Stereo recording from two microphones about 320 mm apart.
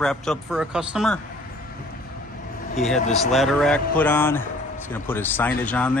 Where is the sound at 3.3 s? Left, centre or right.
Centre.